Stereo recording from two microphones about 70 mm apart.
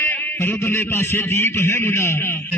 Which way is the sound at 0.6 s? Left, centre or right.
Left.